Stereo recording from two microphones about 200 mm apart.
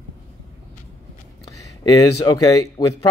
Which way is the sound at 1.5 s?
15° left (ahead or behind).